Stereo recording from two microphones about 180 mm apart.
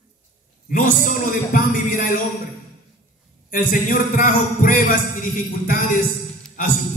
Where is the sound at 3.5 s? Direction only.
50° left (ahead or behind).